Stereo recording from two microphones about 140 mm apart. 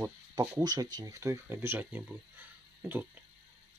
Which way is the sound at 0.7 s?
30° right (ahead or behind).